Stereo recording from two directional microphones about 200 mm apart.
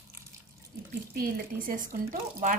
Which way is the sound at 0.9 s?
50° right (ahead or behind).